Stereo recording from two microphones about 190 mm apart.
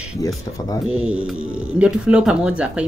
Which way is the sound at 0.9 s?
5° right (ahead or behind).